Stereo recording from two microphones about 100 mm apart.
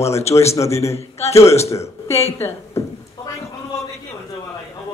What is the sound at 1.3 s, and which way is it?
Speech, 30° left (ahead or behind).